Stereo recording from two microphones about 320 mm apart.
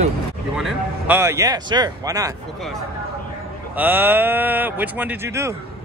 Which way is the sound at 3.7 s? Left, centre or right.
Centre.